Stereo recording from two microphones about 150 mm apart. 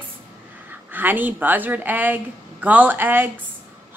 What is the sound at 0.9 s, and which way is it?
A woman's voice, 10° right (ahead or behind).